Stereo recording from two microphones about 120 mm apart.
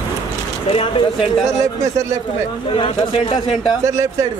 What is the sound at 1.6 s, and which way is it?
Speech, 25° right (ahead or behind).